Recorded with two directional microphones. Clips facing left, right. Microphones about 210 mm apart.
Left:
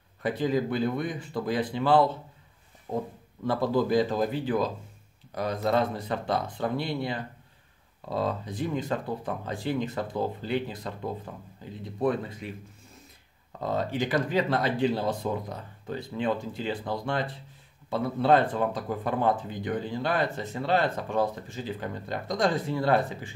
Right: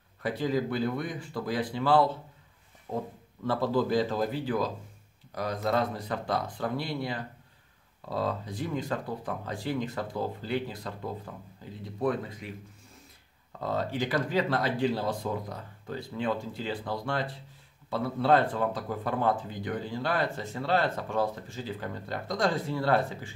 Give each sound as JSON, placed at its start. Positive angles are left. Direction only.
{"t": 0.2, "sound": "speech", "side_deg": 20}
{"t": 13.5, "sound": "speech", "side_deg": 20}